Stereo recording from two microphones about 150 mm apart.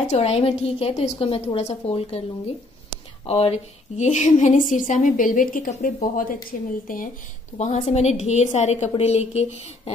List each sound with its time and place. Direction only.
0.0 s a woman's voice: 45° left (ahead or behind); by 6.7 s 65° left (ahead or behind)
7.5 s a woman's voice: 50° left (ahead or behind)